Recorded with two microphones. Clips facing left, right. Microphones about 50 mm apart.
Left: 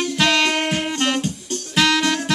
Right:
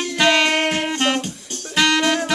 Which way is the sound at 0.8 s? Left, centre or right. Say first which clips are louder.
Right 1 dB; centre.